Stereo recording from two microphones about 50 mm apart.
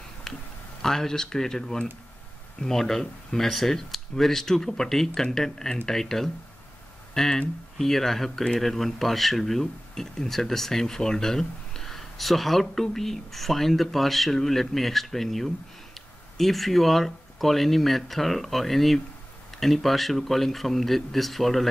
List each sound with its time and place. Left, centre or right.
0.8 s speech: centre